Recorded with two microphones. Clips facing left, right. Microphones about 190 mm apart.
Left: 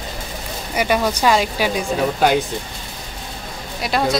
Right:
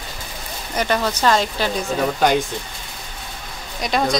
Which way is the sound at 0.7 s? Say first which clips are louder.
Left 2 dB; 10° left (ahead or behind).